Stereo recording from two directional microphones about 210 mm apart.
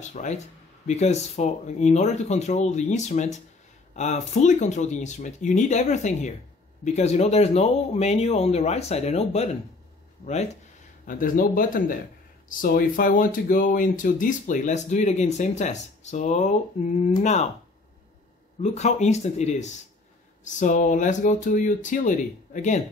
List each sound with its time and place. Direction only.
0.1 s speech: 35° left (ahead or behind)
18.6 s speech: 30° left (ahead or behind)